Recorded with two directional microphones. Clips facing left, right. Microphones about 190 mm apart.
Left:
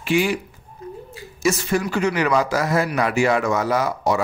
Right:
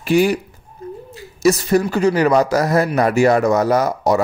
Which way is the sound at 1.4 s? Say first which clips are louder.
Right 6 dB; 40° right (ahead or behind).